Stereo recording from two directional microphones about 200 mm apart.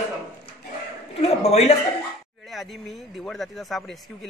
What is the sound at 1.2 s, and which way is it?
Speech, 35° left (ahead or behind).